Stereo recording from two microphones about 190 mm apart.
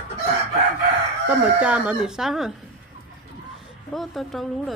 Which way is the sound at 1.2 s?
5° right (ahead or behind).